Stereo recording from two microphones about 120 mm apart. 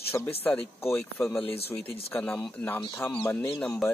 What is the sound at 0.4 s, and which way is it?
Speech, 15° left (ahead or behind).